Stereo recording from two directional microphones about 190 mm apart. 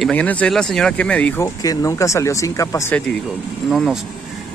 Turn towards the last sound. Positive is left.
turn(degrees=0)  # may be behind; listen again after turning